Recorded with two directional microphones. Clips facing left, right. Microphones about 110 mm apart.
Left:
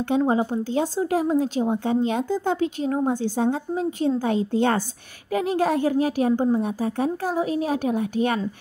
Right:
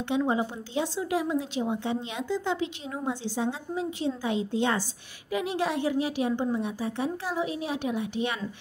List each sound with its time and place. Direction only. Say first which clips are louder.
0.1 s speech: left 5 dB; 40° left (ahead or behind)